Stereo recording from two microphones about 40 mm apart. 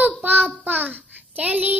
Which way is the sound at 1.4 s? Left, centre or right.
Right.